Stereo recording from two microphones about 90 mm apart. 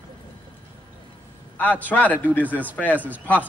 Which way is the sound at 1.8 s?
20° left (ahead or behind).